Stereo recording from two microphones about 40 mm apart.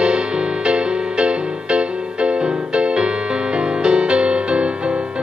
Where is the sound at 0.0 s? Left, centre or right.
Right.